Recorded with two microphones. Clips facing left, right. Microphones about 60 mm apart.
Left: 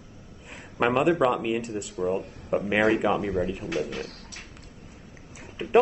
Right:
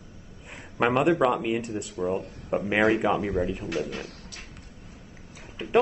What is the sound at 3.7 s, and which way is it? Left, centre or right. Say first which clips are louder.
Speech: left 1 dB; left.